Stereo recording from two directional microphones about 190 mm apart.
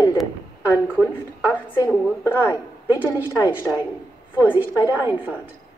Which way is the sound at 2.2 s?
15° left (ahead or behind).